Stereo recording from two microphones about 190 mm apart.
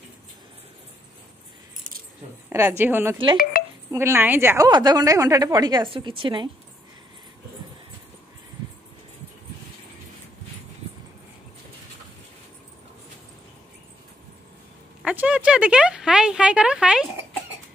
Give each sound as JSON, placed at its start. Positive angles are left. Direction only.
{"t": 2.5, "sound": "a woman's voice", "side_deg": -10}
{"t": 3.6, "sound": "a sound", "side_deg": 50}
{"t": 3.9, "sound": "a woman's voice", "side_deg": -15}
{"t": 15.0, "sound": "speech", "side_deg": -5}